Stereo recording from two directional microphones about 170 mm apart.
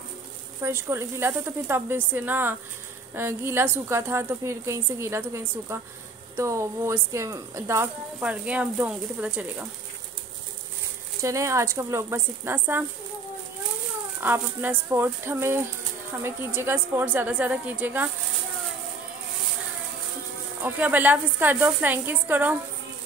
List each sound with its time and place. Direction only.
0.6 s a woman's voice: 15° right (ahead or behind)
11.1 s a woman's voice: 15° right (ahead or behind)
14.2 s a woman's voice: 10° right (ahead or behind)
20.6 s a woman's voice: 10° right (ahead or behind)